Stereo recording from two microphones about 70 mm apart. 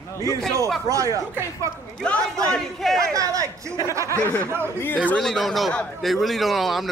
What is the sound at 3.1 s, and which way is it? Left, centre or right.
Speech, right.